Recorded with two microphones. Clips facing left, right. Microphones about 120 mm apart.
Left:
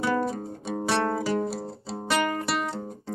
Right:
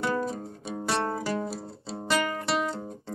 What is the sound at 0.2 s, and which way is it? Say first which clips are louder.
Music: left 3 dB; 65° left (ahead or behind).